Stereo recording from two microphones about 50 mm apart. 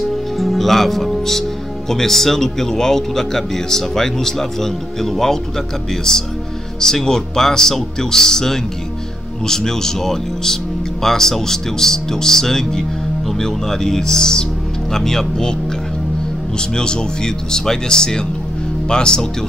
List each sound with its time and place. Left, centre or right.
0.4 s music: centre
1.9 s speech: centre
16.5 s speech: centre